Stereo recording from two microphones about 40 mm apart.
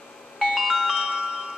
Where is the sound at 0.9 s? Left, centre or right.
Centre.